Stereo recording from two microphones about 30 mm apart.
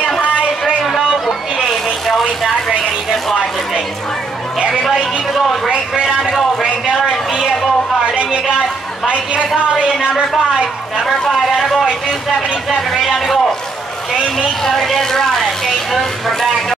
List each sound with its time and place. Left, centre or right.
0.2 s a sound: right
2.0 s vehicle: centre
5.7 s speech: right
6.6 s a sound: right
9.1 s a woman's voice: right
10.0 s speech: right
11.3 s a sound: centre
12.4 s speech: centre
14.6 s speech: centre